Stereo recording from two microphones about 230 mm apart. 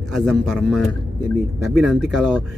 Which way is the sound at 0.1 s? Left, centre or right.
Centre.